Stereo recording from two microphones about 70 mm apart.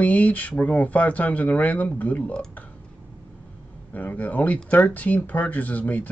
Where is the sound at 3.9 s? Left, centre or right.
Left.